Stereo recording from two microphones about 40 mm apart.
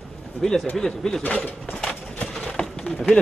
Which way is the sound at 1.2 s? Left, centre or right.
Left.